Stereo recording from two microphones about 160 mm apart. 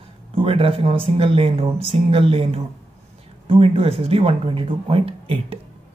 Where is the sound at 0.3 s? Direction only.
35° right (ahead or behind).